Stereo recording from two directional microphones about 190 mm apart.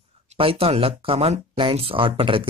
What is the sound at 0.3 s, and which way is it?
Speech, 30° right (ahead or behind).